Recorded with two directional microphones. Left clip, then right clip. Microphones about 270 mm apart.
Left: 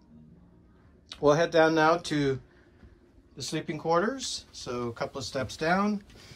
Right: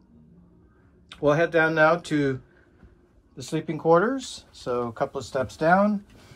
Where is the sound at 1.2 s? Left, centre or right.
Centre.